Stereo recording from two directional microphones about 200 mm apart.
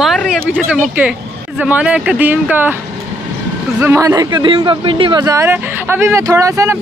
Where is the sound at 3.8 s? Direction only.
10° right (ahead or behind).